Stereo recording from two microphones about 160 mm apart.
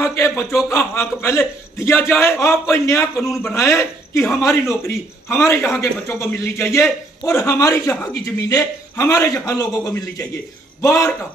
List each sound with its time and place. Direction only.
0.0 s a man's voice: 15° left (ahead or behind)